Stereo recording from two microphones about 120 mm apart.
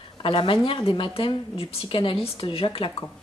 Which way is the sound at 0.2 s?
45° left (ahead or behind).